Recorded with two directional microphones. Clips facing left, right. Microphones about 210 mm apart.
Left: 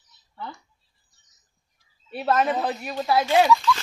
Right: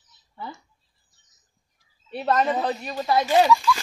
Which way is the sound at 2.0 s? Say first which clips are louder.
Even; 5° left (ahead or behind).